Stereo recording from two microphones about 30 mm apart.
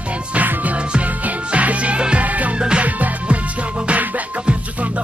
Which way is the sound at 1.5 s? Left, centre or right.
Right.